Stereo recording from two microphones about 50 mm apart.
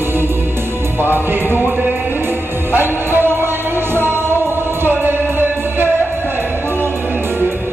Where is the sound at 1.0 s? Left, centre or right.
Right.